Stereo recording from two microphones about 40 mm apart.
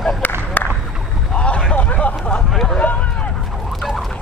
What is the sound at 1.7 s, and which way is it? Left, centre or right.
Vehicle, left.